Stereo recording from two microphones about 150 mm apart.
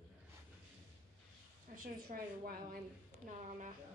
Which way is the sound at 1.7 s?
70° right (ahead or behind).